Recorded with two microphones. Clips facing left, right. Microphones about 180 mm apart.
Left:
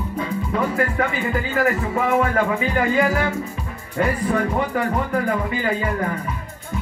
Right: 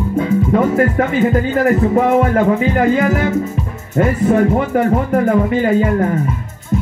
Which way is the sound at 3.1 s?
20° right (ahead or behind).